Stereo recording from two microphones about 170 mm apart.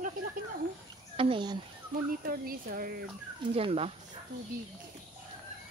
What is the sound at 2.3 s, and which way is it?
Speech, 60° right (ahead or behind).